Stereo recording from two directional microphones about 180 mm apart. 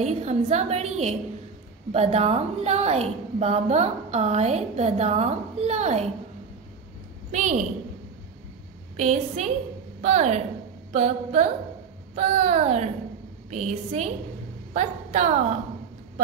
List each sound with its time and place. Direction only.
0.0 s a woman's voice: 40° right (ahead or behind)
7.2 s a woman's voice: 40° right (ahead or behind)
8.9 s a woman's voice: 40° right (ahead or behind)